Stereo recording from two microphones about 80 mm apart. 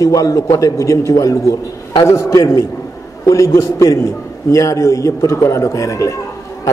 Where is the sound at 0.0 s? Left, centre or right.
Left.